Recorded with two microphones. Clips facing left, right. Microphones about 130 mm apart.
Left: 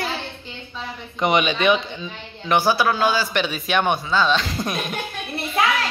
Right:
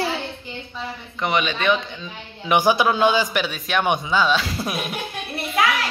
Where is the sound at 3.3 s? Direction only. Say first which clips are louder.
Left 1 dB; centre (ahead or behind).